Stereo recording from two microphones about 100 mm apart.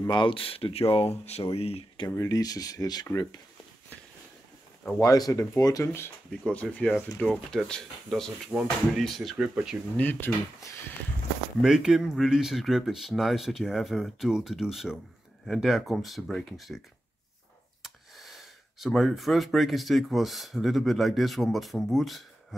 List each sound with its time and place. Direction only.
0.1 s speech: 60° left (ahead or behind); by 2.0 s 85° left
2.0 s speech: 35° left (ahead or behind)
5.0 s speech: 35° left (ahead or behind)
6.4 s speech: 15° left (ahead or behind); by 9.8 s 5° right (ahead or behind)
9.9 s speech: 20° left (ahead or behind)
11.6 s speech: 5° right (ahead or behind)
17.8 s speech: centre (ahead or behind)